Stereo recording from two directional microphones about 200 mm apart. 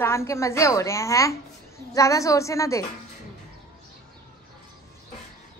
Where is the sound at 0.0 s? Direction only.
15° left (ahead or behind).